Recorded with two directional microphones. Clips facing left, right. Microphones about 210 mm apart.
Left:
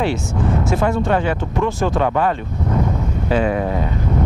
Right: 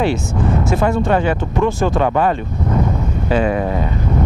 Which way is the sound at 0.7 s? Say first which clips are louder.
Right 2 dB; 15° right (ahead or behind).